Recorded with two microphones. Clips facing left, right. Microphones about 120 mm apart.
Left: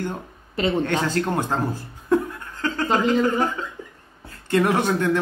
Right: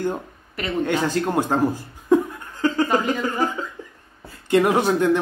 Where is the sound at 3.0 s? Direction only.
15° right (ahead or behind).